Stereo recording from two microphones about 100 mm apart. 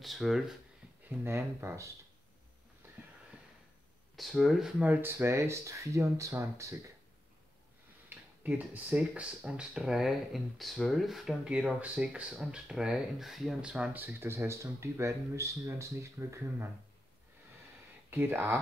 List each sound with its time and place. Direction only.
0.0 s speech: centre (ahead or behind)
1.0 s speech: 25° right (ahead or behind)
4.2 s speech: centre (ahead or behind)
4.8 s speech: 20° right (ahead or behind)
8.1 s speech: 15° right (ahead or behind)
18.1 s speech: 20° right (ahead or behind)